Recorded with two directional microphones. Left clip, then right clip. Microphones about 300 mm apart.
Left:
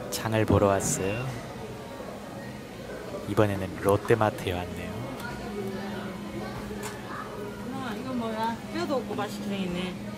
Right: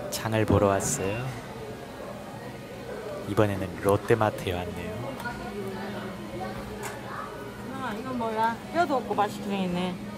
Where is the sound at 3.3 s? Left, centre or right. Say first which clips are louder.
Even; centre.